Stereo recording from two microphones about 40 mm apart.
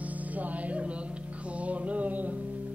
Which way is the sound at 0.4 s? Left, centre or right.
Right.